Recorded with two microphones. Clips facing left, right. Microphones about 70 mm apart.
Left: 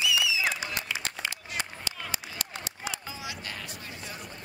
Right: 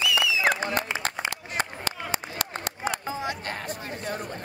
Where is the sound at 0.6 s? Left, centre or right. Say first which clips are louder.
Right 7 dB; right.